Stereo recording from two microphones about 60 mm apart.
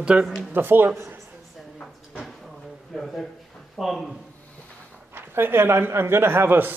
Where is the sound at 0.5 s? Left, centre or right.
Right.